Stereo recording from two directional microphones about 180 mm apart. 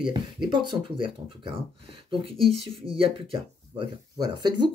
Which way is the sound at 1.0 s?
30° right (ahead or behind).